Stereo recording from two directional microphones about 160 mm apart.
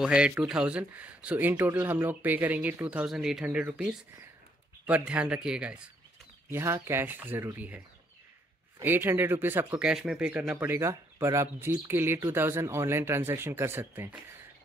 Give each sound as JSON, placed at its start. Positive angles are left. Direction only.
{"t": 0.0, "sound": "speech", "side_deg": -5}
{"t": 8.8, "sound": "speech", "side_deg": -15}